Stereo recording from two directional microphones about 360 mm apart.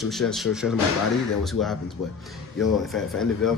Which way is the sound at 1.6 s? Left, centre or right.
Left.